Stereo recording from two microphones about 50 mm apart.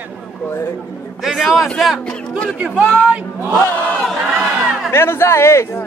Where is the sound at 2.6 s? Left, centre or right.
Right.